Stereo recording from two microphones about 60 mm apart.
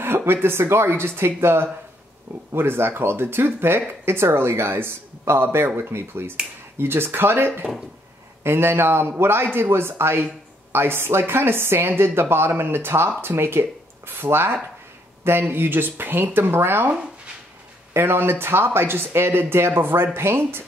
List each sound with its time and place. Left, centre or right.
0.0 s speech: right
17.9 s speech: right